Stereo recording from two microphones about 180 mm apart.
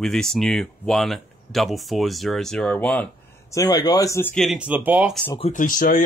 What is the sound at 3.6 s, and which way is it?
Speech, 20° left (ahead or behind).